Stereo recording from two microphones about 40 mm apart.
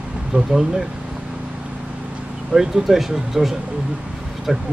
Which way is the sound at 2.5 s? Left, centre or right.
Centre.